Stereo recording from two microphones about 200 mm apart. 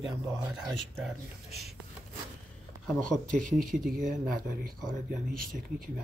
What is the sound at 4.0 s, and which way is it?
Speech, 45° right (ahead or behind).